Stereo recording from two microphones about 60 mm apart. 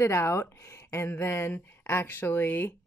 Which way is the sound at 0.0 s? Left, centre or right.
Left.